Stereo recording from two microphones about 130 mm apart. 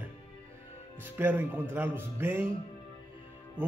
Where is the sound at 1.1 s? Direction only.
15° right (ahead or behind).